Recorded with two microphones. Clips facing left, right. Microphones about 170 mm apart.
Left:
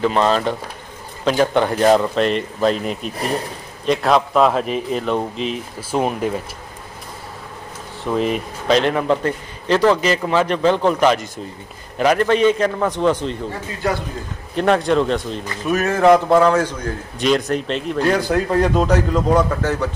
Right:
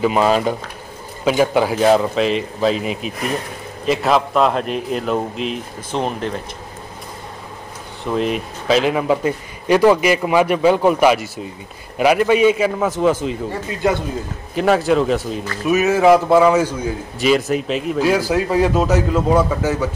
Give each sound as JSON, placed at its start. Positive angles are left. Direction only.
{"t": 0.0, "sound": "a man's voice", "side_deg": -10}
{"t": 8.0, "sound": "speech", "side_deg": 0}
{"t": 13.8, "sound": "a man's voice", "side_deg": -20}
{"t": 14.5, "sound": "a man's voice", "side_deg": -5}